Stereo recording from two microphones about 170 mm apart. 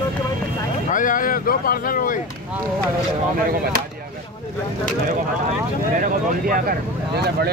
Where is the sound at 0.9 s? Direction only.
50° left (ahead or behind).